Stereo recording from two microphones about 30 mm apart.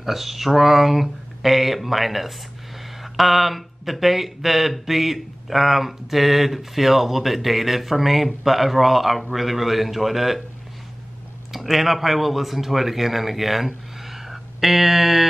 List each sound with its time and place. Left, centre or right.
0.0 s speech: centre
11.5 s speech: centre
14.0 s a sound: centre